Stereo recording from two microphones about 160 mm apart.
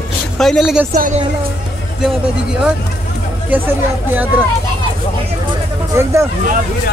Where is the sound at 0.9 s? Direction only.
55° right (ahead or behind).